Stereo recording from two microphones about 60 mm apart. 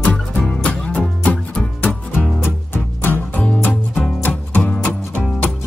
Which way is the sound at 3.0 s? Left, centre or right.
Left.